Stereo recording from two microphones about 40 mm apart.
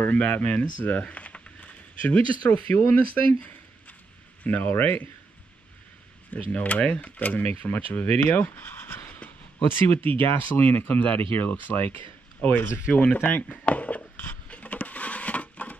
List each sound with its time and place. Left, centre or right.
0.0 s speech: left
4.5 s speech: left
6.3 s speech: left
10.5 s speech: left
13.1 s a sound: left